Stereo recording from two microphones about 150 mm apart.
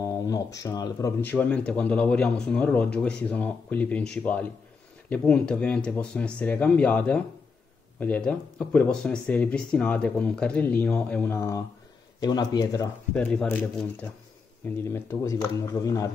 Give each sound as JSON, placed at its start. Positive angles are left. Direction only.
{"t": 0.0, "sound": "speech", "side_deg": 20}
{"t": 1.2, "sound": "speech", "side_deg": 10}
{"t": 11.3, "sound": "speech", "side_deg": 20}
{"t": 13.1, "sound": "speech", "side_deg": 5}
{"t": 14.9, "sound": "speech", "side_deg": 20}